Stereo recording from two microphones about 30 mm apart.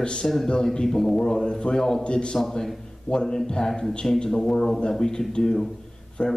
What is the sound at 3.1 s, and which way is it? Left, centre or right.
Speech, left.